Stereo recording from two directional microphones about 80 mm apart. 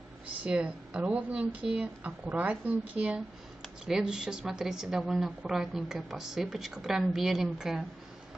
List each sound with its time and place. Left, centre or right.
0.4 s a woman's voice: centre